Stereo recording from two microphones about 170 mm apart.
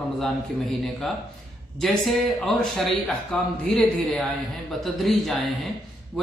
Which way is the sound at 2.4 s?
5° left (ahead or behind).